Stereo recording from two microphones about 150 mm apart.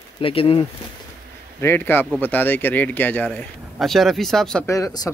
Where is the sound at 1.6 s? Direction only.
15° left (ahead or behind).